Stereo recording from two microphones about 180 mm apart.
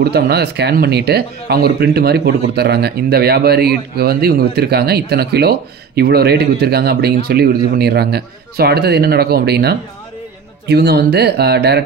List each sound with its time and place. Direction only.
0.1 s speech: 65° right (ahead or behind)